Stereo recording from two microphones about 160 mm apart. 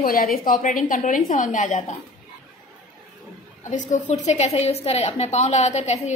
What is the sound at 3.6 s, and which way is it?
A woman's voice, 50° left (ahead or behind).